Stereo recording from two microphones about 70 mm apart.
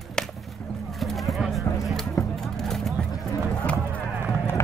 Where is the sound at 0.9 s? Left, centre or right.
Centre.